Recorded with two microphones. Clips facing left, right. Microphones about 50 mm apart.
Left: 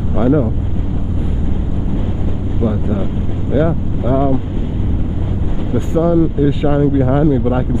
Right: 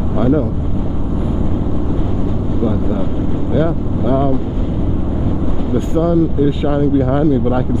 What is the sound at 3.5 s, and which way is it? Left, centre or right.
Speech, centre.